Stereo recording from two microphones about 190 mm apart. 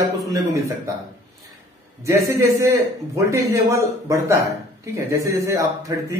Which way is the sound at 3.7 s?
15° right (ahead or behind).